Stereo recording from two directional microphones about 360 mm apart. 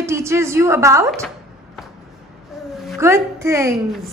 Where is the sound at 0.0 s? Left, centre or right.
Centre.